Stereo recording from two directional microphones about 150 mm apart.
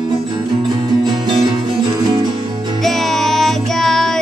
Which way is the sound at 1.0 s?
30° right (ahead or behind).